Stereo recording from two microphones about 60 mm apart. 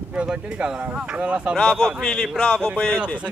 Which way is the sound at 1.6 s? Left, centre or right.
Centre.